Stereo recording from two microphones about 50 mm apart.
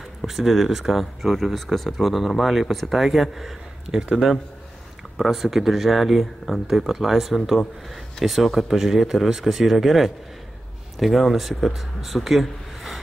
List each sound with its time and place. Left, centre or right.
0.3 s speech: centre
5.1 s speech: centre